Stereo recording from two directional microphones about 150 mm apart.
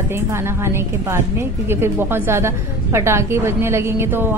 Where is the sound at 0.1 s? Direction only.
15° right (ahead or behind).